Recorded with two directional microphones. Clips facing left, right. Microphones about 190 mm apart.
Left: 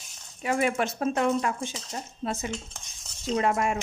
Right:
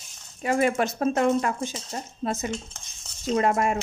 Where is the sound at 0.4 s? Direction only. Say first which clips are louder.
Right 3 dB; 45° right (ahead or behind).